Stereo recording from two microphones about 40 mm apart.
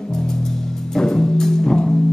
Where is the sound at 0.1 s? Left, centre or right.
Centre.